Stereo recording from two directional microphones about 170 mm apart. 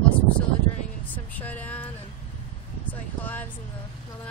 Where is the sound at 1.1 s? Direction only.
10° left (ahead or behind).